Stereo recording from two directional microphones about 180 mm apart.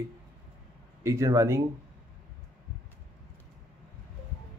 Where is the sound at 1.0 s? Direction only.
15° right (ahead or behind).